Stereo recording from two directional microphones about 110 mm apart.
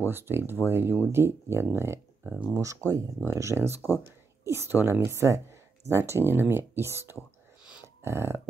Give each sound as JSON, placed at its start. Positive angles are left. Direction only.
{"t": 0.0, "sound": "speech", "side_deg": -20}
{"t": 2.5, "sound": "speech", "side_deg": -30}
{"t": 7.8, "sound": "a sound", "side_deg": -25}